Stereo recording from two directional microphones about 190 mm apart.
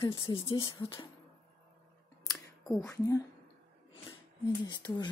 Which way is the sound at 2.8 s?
15° left (ahead or behind).